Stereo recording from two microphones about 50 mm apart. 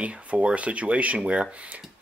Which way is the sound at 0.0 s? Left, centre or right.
Right.